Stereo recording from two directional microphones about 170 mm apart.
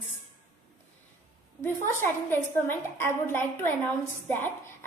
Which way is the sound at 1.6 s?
15° left (ahead or behind).